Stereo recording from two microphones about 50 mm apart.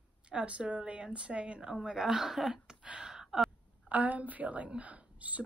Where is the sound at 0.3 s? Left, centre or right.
Right.